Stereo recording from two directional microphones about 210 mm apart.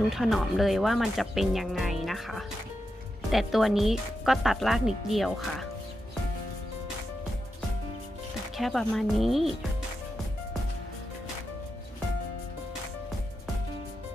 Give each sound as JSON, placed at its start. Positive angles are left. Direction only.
{"t": 0.1, "sound": "speech", "side_deg": 0}
{"t": 8.5, "sound": "speech", "side_deg": 0}